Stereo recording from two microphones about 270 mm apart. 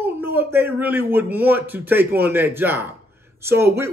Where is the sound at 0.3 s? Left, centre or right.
Centre.